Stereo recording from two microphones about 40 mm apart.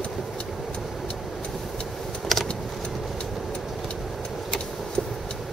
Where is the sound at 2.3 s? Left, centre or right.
Centre.